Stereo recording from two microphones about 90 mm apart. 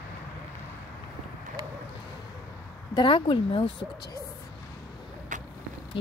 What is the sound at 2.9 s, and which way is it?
Speech, 65° left (ahead or behind).